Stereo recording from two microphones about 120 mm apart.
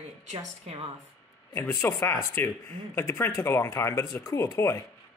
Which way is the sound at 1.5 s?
20° left (ahead or behind).